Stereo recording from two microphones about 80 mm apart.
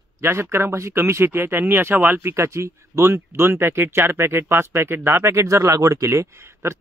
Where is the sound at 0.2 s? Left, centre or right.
Right.